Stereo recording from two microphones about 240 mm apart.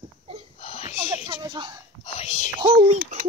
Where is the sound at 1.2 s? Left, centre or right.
Centre.